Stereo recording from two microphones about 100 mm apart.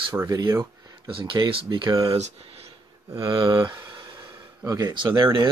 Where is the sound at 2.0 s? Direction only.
70° right (ahead or behind).